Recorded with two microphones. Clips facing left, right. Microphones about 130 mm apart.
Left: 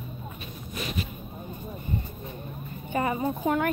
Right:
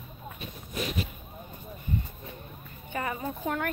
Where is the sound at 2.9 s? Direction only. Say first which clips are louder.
Left 6 dB; 15° left (ahead or behind).